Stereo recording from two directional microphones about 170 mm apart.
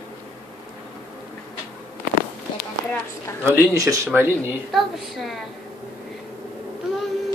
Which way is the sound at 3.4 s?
15° right (ahead or behind).